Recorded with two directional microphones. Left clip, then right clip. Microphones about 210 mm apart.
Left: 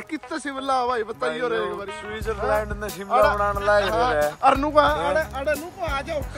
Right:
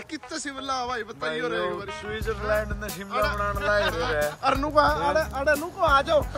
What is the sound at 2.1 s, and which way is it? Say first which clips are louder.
Speech: left 1 dB; 15° right (ahead or behind).